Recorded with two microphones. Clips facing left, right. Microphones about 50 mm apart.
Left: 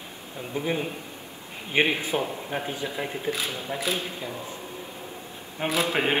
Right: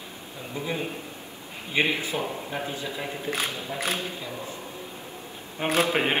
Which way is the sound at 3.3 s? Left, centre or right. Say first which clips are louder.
Even; right.